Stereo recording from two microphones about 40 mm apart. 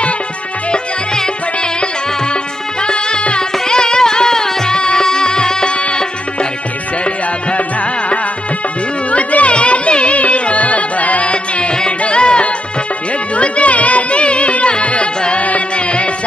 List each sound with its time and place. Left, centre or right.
0.7 s music: centre
2.8 s music: left
9.1 s music: left